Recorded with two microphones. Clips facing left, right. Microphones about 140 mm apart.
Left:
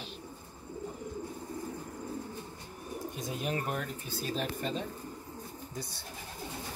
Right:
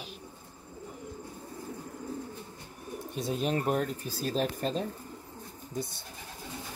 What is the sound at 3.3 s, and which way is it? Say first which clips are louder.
Speech: right 6 dB; 30° right (ahead or behind).